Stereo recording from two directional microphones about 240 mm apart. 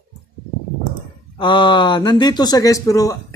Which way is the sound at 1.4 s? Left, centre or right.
Centre.